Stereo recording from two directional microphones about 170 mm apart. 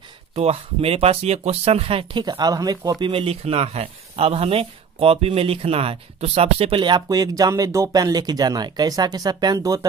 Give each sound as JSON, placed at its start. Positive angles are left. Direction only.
{"t": 0.4, "sound": "speech", "side_deg": -35}